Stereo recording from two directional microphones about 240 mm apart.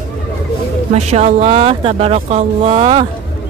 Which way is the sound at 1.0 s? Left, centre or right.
Right.